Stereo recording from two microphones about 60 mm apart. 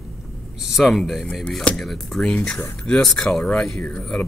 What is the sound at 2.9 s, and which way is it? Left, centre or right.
Speech, centre.